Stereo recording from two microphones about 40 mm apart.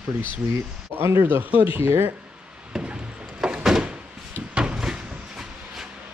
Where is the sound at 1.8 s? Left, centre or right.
Right.